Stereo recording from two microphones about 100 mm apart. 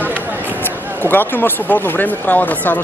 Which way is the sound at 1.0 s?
20° left (ahead or behind).